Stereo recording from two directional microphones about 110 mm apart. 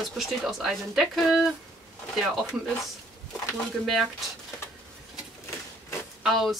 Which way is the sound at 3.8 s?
Centre (ahead or behind).